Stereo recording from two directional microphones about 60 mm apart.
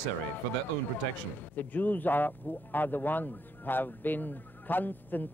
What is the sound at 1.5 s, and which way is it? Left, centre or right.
Speech, left.